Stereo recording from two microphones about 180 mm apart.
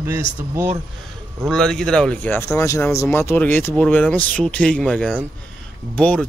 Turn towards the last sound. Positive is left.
turn(degrees=5)  # may be behind; listen again after turning